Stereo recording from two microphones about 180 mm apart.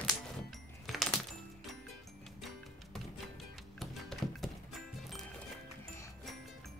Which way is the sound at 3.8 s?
Centre (ahead or behind).